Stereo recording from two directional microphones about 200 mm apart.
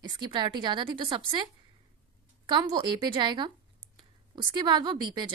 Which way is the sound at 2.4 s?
25° right (ahead or behind).